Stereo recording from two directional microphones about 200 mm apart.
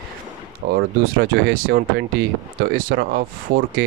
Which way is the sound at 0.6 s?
60° right (ahead or behind).